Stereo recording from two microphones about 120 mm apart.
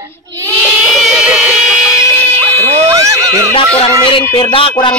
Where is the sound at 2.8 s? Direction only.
25° right (ahead or behind).